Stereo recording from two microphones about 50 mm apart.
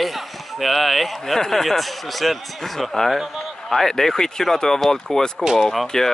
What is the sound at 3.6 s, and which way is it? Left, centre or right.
Speech, centre.